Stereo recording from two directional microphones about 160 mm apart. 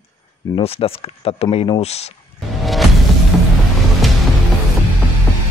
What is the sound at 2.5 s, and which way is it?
Music, centre (ahead or behind).